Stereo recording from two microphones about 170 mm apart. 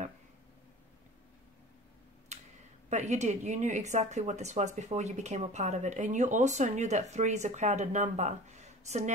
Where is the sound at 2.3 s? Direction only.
40° right (ahead or behind).